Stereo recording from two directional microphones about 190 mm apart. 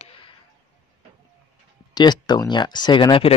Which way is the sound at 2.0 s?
20° left (ahead or behind).